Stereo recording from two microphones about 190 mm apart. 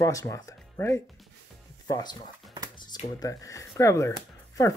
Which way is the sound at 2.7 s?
25° left (ahead or behind).